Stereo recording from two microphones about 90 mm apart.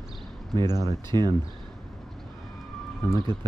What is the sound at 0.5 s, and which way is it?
Speech, 45° right (ahead or behind).